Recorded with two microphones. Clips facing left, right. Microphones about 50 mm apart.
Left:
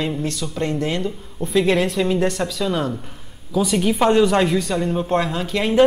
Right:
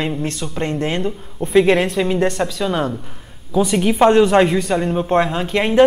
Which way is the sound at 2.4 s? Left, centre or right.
Right.